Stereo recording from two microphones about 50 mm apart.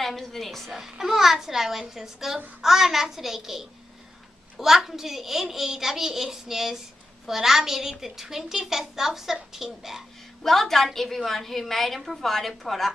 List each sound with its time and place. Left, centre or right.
0.0 s a woman's voice: centre
0.7 s a woman's voice: centre
10.4 s a woman's voice: centre